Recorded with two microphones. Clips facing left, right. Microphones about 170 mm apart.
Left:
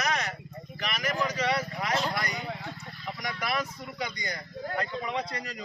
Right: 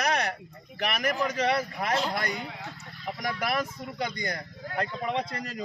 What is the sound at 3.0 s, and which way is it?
Speech, 50° right (ahead or behind).